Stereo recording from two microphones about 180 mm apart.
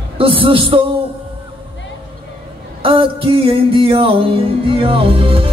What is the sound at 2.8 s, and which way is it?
Music, 30° right (ahead or behind).